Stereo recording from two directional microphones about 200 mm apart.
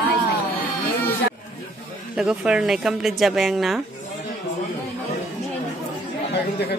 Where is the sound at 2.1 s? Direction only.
5° right (ahead or behind).